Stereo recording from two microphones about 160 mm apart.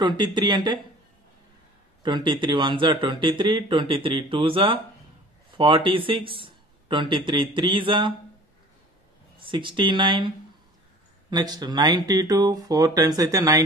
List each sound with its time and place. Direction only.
0.0 s speech: 30° right (ahead or behind)
2.0 s speech: 30° right (ahead or behind)
9.4 s speech: 30° right (ahead or behind)